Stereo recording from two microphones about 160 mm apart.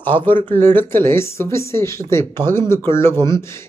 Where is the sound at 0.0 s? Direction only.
10° left (ahead or behind).